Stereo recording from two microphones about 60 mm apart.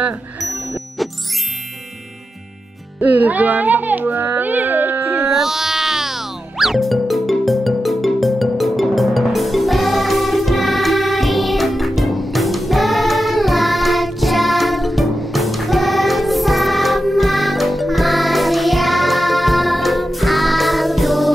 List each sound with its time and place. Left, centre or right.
3.0 s speech: right
4.4 s a sound: right
5.2 s music: centre